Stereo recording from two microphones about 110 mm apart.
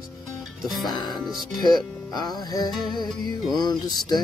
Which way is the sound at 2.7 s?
Centre (ahead or behind).